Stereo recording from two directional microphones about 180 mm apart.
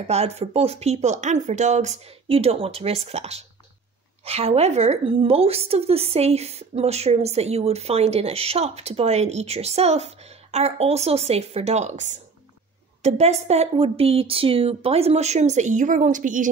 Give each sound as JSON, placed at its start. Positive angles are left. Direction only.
{"t": 0.0, "sound": "a woman's voice", "side_deg": -35}